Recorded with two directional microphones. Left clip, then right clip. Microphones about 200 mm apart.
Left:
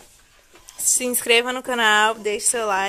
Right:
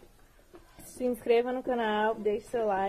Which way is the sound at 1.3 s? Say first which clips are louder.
Left 8 dB; 10° left (ahead or behind).